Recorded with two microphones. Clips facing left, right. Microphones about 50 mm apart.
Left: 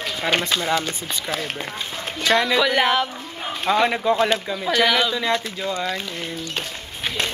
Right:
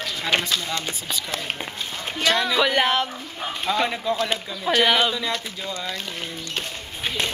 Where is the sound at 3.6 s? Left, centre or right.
Left.